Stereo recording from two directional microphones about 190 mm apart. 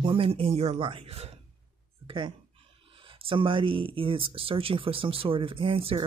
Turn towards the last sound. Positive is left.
turn(degrees=-30)  # may be behind; listen again after turning